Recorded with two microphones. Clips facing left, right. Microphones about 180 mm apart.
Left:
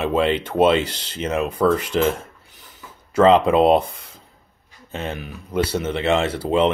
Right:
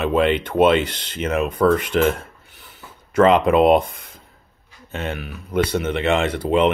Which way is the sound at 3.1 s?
30° left (ahead or behind).